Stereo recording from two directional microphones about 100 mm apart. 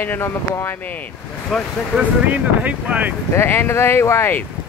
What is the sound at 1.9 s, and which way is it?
Speech, 15° right (ahead or behind).